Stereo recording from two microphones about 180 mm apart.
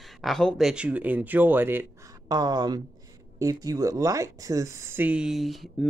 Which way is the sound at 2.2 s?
20° right (ahead or behind).